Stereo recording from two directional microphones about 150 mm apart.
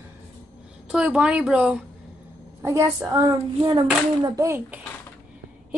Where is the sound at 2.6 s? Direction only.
20° right (ahead or behind).